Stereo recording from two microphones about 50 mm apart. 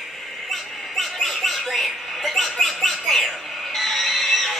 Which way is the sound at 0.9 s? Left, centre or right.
Centre.